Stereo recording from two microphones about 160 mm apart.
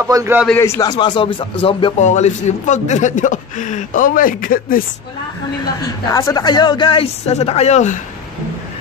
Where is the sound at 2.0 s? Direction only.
45° left (ahead or behind).